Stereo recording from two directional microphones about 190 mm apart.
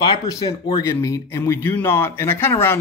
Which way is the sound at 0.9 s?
15° left (ahead or behind).